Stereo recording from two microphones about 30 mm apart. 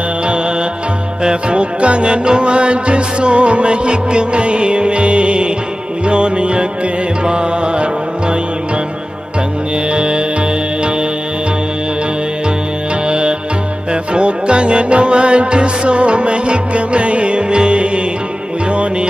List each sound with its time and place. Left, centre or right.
1.2 s music: right
9.9 s music: right
14.1 s music: right